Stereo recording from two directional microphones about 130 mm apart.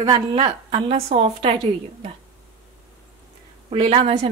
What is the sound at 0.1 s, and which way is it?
A woman's voice, 40° right (ahead or behind).